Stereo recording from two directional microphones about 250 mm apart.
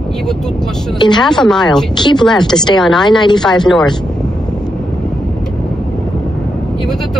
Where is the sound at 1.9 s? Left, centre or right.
Centre.